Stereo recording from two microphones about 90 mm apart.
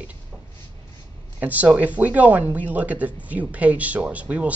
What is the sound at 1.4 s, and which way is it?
Speech, 20° right (ahead or behind).